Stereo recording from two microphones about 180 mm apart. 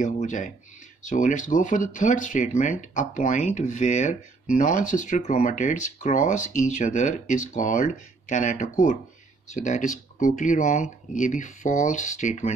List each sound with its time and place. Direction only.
0.0 s speech: 45° left (ahead or behind)